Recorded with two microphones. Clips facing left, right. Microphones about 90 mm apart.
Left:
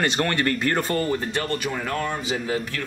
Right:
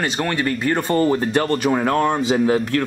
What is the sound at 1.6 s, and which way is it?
Speech, 50° right (ahead or behind).